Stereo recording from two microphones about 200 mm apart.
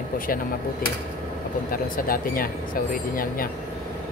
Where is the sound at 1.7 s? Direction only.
45° left (ahead or behind).